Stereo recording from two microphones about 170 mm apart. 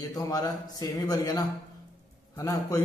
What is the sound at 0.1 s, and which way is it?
A man's voice, 20° left (ahead or behind).